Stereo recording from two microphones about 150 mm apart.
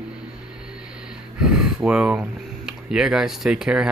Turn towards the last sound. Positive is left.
turn(degrees=-5)  # may be behind; listen again after turning